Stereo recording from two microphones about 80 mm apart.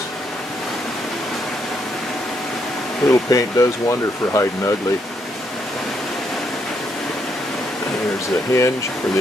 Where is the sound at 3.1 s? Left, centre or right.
Left.